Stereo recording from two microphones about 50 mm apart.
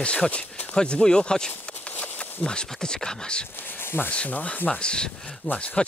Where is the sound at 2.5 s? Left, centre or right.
Centre.